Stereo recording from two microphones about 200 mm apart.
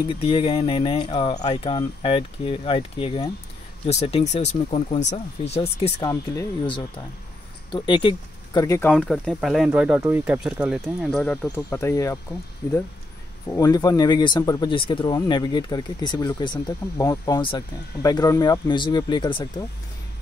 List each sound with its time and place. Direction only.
0.0 s speech: 25° left (ahead or behind)
8.9 s speech: 5° left (ahead or behind)
13.5 s speech: 20° left (ahead or behind)